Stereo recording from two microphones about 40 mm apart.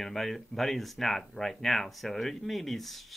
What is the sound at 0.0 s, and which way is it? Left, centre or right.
Speech, centre.